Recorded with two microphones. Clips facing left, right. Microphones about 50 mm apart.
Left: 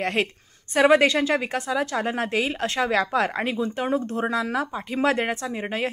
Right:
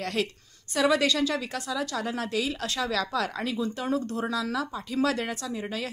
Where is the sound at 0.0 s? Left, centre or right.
Left.